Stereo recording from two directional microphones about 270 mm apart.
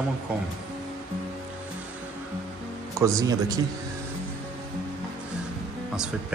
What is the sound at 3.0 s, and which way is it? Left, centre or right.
Speech, centre.